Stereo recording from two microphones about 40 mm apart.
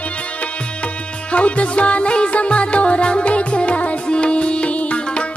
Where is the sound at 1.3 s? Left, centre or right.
Left.